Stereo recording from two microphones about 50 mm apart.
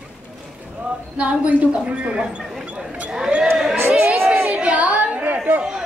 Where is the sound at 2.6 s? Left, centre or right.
Right.